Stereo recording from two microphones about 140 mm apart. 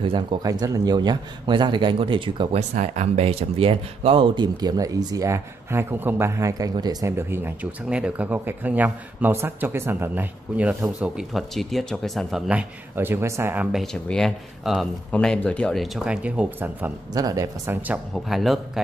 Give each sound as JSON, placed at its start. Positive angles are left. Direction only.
{"t": 0.0, "sound": "a man's voice", "side_deg": -35}
{"t": 0.4, "sound": "a man's voice", "side_deg": -25}
{"t": 2.7, "sound": "speech", "side_deg": -50}
{"t": 14.0, "sound": "speech", "side_deg": 5}
{"t": 15.0, "sound": "speech", "side_deg": 10}
{"t": 17.1, "sound": "speech", "side_deg": -25}
{"t": 18.1, "sound": "speech", "side_deg": 0}